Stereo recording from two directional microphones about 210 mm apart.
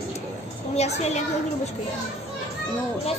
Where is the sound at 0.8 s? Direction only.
30° left (ahead or behind).